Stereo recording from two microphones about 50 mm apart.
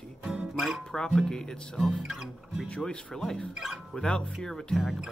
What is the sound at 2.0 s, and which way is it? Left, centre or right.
Speech, centre.